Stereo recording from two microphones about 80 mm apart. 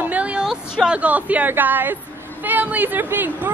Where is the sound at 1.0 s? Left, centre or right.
Centre.